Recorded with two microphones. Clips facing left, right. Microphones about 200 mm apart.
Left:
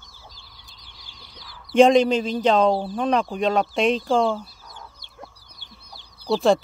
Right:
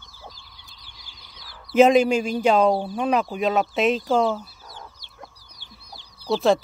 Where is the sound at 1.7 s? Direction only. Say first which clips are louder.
Left 1 dB; 5° right (ahead or behind).